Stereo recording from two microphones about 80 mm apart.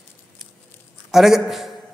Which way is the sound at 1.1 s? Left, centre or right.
Centre.